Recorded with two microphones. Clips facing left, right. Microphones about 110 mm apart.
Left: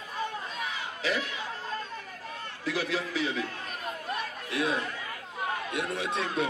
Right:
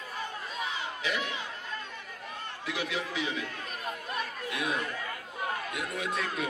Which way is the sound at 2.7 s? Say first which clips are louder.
Left 3 dB; 40° left (ahead or behind).